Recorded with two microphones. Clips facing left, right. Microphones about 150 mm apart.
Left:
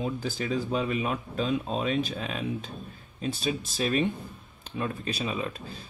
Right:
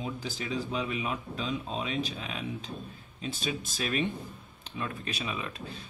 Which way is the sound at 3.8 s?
35° left (ahead or behind).